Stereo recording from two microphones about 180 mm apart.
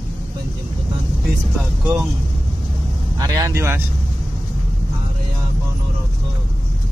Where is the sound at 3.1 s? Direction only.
20° right (ahead or behind).